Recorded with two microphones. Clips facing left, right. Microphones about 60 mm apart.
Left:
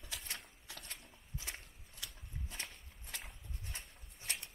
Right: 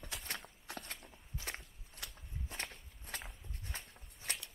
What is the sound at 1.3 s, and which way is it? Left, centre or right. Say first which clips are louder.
Walk: right 2 dB; right.